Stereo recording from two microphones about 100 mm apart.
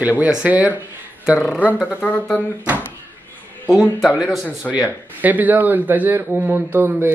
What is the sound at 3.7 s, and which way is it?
Speech, centre (ahead or behind).